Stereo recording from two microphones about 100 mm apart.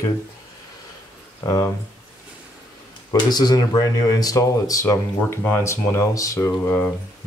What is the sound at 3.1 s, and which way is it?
Speech, 40° left (ahead or behind).